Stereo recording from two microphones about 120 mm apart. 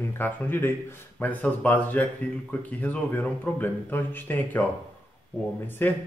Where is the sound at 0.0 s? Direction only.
15° left (ahead or behind).